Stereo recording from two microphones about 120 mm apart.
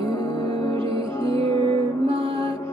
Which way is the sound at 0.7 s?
50° right (ahead or behind).